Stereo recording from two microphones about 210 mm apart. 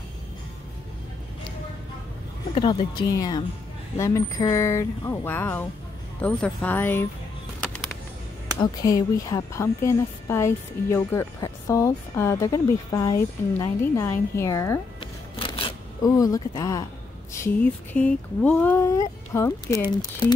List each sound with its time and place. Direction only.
2.5 s a woman's voice: 20° left (ahead or behind)
8.5 s a woman's voice: 15° left (ahead or behind)
15.0 s shuffling cards: 25° left (ahead or behind)
17.3 s a woman's voice: 10° left (ahead or behind)